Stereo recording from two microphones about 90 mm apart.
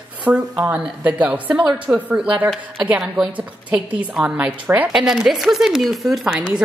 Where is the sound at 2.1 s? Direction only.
15° right (ahead or behind).